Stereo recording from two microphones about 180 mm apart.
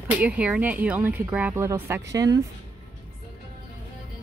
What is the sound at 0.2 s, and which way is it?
Speech, 10° right (ahead or behind).